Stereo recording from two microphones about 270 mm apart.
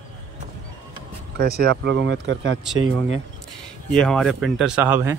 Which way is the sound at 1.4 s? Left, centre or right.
Right.